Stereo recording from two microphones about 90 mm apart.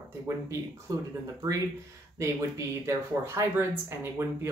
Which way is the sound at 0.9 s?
40° right (ahead or behind).